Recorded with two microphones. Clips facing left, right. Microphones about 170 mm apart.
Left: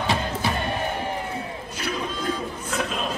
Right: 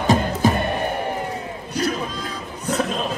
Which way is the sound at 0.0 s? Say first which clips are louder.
Right 7 dB; 45° right (ahead or behind).